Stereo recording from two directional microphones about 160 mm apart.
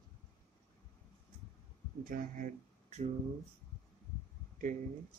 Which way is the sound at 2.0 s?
55° right (ahead or behind).